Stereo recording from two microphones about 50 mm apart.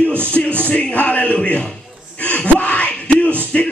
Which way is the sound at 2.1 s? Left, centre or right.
Left.